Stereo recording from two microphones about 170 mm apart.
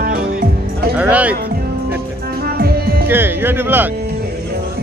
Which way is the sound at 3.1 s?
10° right (ahead or behind).